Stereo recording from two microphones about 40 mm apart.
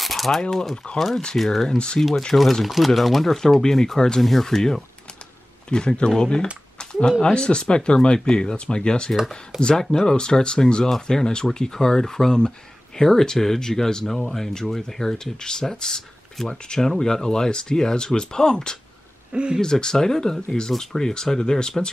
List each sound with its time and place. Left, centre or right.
0.0 s a sound: centre
0.4 s speech: centre
5.7 s speech: left
6.8 s a sound: left
7.3 s speech: left
19.3 s speech: right
19.6 s speech: centre